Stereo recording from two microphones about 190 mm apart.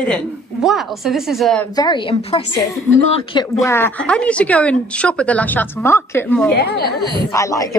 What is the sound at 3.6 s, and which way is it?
Speech, 10° left (ahead or behind).